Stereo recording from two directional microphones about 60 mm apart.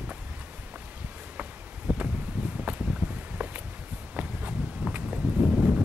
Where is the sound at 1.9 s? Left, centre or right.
Centre.